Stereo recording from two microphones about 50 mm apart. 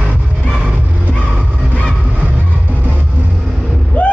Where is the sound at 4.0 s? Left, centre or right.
Left.